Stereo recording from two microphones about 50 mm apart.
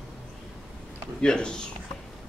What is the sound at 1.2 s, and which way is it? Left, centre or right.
Speech, centre.